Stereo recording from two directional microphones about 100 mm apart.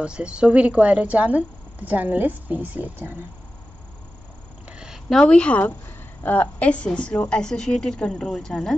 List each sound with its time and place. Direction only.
0.0 s speech: 10° right (ahead or behind)
4.6 s a sound: 5° right (ahead or behind)
5.2 s a woman's voice: 10° left (ahead or behind)